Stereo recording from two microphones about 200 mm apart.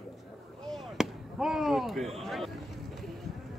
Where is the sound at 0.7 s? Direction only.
Centre (ahead or behind).